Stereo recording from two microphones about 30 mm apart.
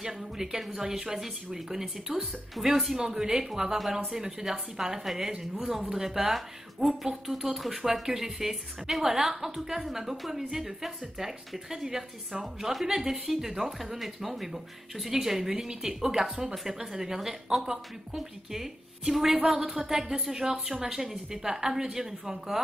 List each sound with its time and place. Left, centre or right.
0.0 s speech: centre